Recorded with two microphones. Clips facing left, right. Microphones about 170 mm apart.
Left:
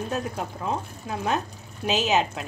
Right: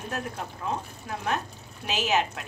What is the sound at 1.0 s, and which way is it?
A woman's voice, 20° left (ahead or behind).